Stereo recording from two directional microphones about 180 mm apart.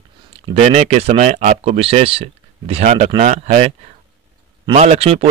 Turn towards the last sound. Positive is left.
turn(degrees=-35)  # may be behind; listen again after turning